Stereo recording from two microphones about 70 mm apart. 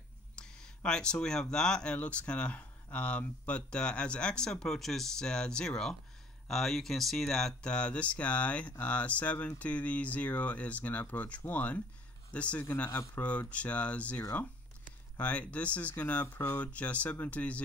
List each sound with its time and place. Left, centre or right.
0.4 s speech: centre; by 16.6 s left
16.6 s speech: centre